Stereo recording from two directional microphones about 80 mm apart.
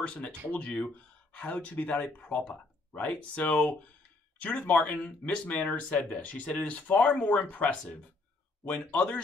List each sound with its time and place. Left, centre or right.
0.0 s speech: centre